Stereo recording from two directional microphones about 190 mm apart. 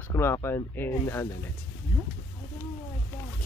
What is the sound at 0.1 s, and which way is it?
Speech, 15° left (ahead or behind).